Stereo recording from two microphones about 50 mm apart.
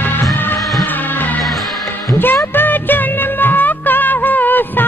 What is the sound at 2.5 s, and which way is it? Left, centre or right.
Music, left.